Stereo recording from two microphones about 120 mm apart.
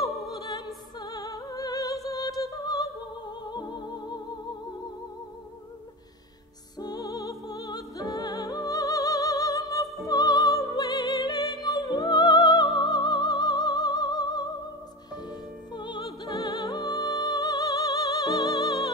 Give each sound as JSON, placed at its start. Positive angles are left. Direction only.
{"t": 0.3, "sound": "opera", "side_deg": 30}
{"t": 0.9, "sound": "music", "side_deg": 30}
{"t": 6.8, "sound": "music", "side_deg": 30}